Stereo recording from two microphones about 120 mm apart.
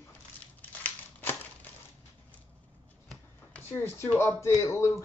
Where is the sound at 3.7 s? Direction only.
20° left (ahead or behind).